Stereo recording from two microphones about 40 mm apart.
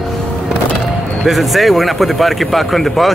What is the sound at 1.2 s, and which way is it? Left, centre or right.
Speech, centre.